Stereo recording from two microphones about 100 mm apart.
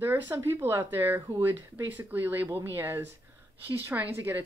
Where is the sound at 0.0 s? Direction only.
25° right (ahead or behind).